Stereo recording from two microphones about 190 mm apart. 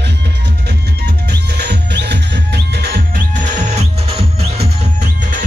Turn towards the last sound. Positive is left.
turn(degrees=-30)  # may be behind; listen again after turning